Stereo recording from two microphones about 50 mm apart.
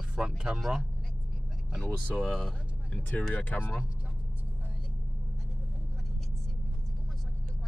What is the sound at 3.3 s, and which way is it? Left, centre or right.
Speech, left.